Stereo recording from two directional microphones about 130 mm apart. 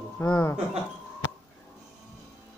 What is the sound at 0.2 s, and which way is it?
Speech, 20° left (ahead or behind).